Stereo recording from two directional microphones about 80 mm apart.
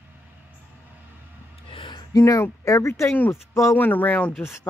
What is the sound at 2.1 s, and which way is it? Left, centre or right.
Speech, left.